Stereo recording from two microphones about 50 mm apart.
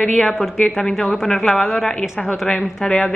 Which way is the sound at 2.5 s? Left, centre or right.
Left.